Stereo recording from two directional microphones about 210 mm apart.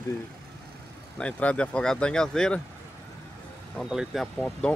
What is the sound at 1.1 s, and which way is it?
Speech, 5° left (ahead or behind).